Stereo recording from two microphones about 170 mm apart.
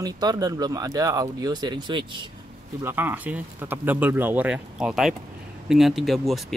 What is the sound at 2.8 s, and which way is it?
Speech, 10° right (ahead or behind).